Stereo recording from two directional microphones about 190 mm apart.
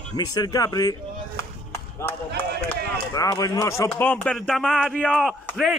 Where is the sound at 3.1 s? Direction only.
20° left (ahead or behind).